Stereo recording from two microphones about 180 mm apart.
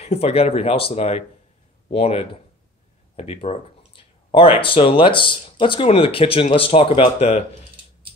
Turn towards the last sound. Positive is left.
turn(degrees=35)  # may be behind; listen again after turning